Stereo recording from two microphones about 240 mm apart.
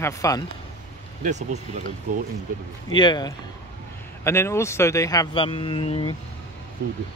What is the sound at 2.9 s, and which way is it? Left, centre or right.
Speech, centre.